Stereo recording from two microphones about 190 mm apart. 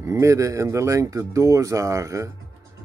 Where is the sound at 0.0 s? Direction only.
15° right (ahead or behind).